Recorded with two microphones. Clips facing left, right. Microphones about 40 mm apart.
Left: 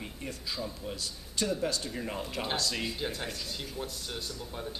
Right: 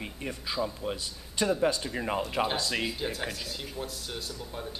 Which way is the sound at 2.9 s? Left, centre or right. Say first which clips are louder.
Right 2 dB; centre.